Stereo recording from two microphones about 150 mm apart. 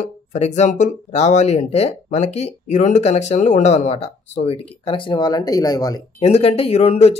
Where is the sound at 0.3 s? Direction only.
50° left (ahead or behind); by 5.9 s 25° left (ahead or behind).